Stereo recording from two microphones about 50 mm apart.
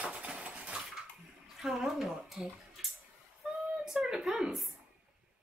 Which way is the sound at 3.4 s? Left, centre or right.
Right.